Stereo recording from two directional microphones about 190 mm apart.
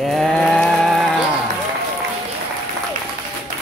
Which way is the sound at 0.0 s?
Centre (ahead or behind).